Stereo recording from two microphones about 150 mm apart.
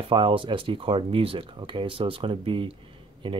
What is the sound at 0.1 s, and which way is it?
Speech, 35° right (ahead or behind).